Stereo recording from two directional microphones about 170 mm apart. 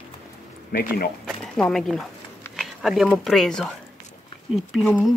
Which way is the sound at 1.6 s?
5° left (ahead or behind).